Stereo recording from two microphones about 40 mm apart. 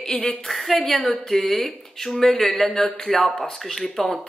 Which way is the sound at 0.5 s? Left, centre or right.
Centre.